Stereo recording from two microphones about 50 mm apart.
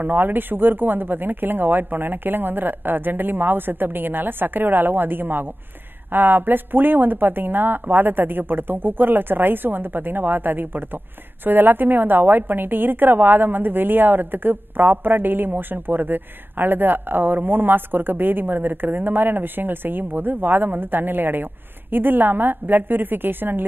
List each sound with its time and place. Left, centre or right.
0.0 s a woman's voice: right